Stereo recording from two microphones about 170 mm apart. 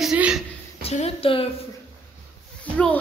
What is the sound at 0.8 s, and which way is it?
Speech, 35° left (ahead or behind).